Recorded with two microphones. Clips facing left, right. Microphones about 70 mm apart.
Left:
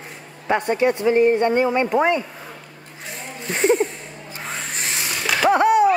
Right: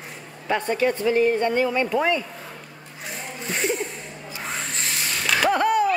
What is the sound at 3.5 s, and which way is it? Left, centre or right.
Speech, left.